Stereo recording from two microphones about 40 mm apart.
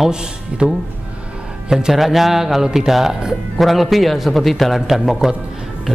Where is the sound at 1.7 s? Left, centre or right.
Centre.